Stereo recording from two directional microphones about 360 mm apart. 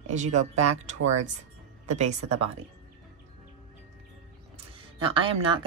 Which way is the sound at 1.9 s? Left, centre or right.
Centre.